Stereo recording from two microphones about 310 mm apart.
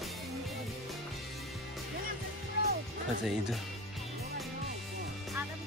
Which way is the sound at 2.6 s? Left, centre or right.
Left.